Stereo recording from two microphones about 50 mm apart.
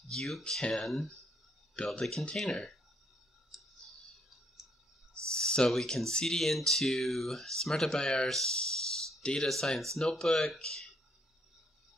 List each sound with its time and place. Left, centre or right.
0.1 s speech: centre
2.0 s speech: centre
3.5 s clicking: centre
5.3 s speech: centre